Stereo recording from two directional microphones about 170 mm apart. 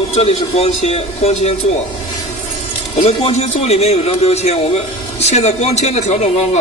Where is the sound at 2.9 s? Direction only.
35° left (ahead or behind).